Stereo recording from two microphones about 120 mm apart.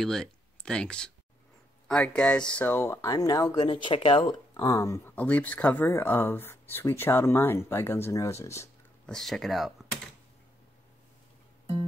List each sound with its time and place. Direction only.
0.0 s speech: 5° left (ahead or behind); by 3.6 s 30° left (ahead or behind)
3.7 s speech: 55° left (ahead or behind)
4.2 s speech: 35° left (ahead or behind)
5.1 s speech: 15° left (ahead or behind)
9.0 s speech: 5° left (ahead or behind)